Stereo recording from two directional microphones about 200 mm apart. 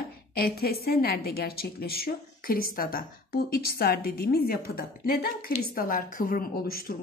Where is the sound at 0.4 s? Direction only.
50° left (ahead or behind).